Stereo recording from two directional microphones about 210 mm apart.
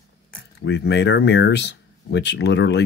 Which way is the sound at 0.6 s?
55° left (ahead or behind).